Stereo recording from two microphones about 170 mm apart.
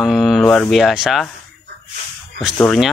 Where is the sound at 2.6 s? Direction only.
5° left (ahead or behind).